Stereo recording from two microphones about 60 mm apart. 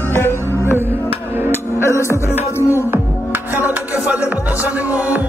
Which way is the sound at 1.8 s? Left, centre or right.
Left.